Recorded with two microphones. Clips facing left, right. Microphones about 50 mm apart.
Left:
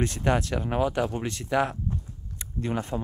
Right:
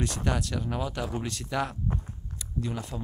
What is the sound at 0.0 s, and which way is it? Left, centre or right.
Speech, left.